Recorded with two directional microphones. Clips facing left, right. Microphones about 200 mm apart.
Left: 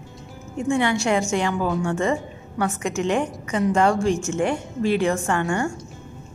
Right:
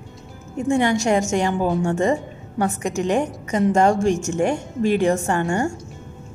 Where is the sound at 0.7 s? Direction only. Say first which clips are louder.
Right 2 dB; 40° right (ahead or behind).